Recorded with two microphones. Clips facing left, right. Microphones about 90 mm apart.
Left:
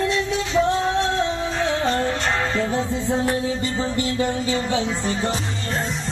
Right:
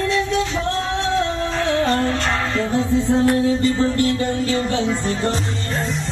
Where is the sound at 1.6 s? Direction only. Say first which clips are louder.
Right 3 dB; 15° left (ahead or behind).